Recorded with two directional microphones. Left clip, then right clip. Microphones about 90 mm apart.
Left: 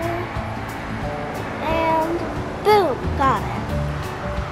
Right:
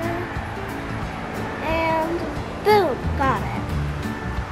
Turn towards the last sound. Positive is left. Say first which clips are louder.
# left 3 dB
turn(degrees=20)  # may be behind; listen again after turning